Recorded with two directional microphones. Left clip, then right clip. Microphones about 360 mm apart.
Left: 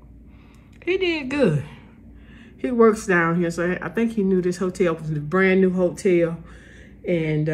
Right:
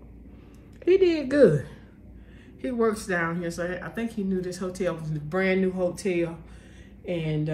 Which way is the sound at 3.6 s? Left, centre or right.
Centre.